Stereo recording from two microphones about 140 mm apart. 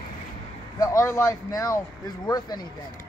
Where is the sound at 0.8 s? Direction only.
20° left (ahead or behind).